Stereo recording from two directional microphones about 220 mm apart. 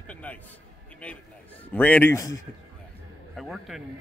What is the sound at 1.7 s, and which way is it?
Speech, 5° left (ahead or behind).